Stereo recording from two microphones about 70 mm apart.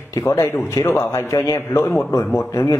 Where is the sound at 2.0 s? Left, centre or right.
Left.